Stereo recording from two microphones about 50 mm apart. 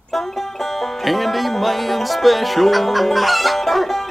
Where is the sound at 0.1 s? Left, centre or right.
Centre.